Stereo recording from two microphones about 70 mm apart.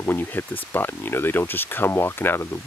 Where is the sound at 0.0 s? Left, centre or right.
Left.